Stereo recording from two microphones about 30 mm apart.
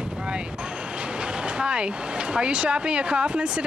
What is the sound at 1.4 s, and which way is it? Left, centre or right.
Speech, right.